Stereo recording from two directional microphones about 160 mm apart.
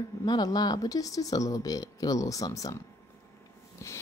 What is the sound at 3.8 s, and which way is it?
Snort, 20° left (ahead or behind).